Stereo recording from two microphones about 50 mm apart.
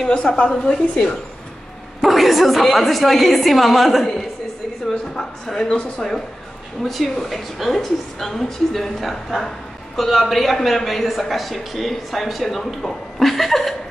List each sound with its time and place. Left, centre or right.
0.1 s a woman's voice: centre
2.0 s a woman's voice: centre
6.8 s a woman's voice: centre